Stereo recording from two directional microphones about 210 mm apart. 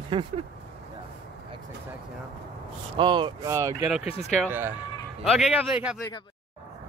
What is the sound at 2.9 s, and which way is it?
Speech, 20° right (ahead or behind).